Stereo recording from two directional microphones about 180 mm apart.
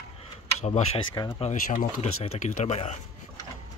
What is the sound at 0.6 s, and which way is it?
Speech, 40° left (ahead or behind).